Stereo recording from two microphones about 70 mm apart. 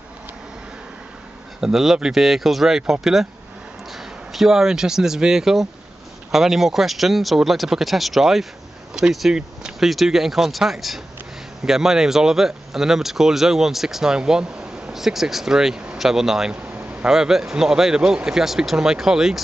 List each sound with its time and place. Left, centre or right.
1.6 s speech: centre
16.6 s a sound: right
17.0 s speech: centre